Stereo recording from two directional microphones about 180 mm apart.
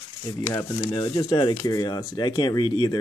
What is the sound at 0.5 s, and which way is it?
Speech, 20° left (ahead or behind).